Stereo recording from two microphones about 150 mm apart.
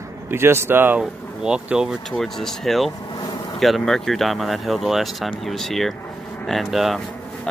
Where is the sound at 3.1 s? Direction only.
25° left (ahead or behind).